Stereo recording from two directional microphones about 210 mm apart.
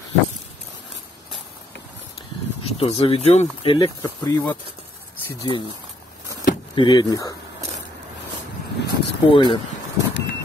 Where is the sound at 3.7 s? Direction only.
20° left (ahead or behind).